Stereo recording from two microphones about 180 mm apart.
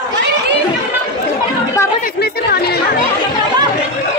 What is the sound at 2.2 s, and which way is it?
Speech, 60° left (ahead or behind).